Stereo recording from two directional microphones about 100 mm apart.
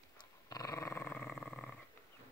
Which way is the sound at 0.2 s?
40° left (ahead or behind).